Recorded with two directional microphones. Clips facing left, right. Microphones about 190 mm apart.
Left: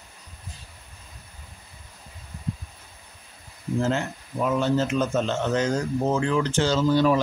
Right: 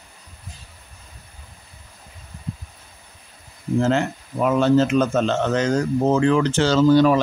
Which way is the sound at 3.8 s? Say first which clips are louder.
Right 6 dB; 85° right.